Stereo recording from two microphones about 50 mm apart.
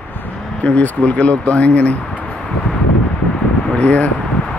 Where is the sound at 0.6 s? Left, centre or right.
Left.